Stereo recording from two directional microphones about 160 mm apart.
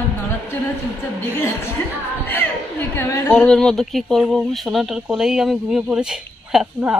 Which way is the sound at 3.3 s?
5° left (ahead or behind).